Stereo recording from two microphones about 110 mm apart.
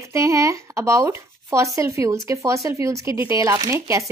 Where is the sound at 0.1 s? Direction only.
30° right (ahead or behind).